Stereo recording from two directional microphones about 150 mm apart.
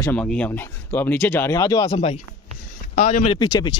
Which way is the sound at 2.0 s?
40° left (ahead or behind).